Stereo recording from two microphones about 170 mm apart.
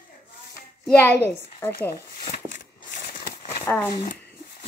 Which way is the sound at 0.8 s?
10° left (ahead or behind).